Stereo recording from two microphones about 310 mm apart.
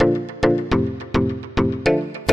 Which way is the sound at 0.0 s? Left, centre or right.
Centre.